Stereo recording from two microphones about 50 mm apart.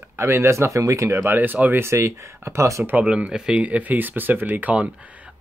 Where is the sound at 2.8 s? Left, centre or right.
Right.